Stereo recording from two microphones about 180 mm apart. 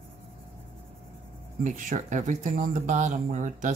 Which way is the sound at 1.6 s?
45° right (ahead or behind).